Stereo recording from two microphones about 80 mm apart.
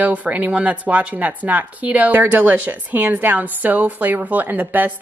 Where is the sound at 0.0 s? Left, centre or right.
Centre.